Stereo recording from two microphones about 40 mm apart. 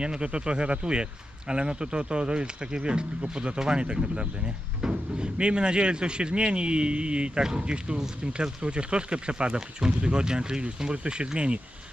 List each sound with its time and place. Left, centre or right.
0.0 s speech: right